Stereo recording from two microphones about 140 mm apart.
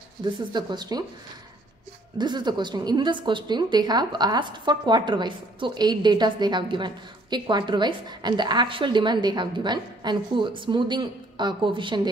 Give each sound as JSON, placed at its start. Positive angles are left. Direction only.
{"t": 0.2, "sound": "a woman's voice", "side_deg": -30}
{"t": 2.1, "sound": "a woman's voice", "side_deg": -30}